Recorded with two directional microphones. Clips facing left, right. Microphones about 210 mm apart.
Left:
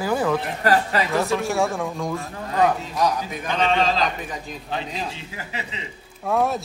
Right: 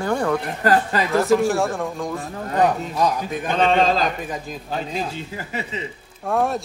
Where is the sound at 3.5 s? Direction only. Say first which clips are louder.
Right 3 dB; 45° right (ahead or behind).